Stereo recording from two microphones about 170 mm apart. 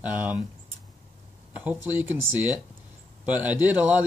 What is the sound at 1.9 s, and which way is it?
Speech, 10° right (ahead or behind).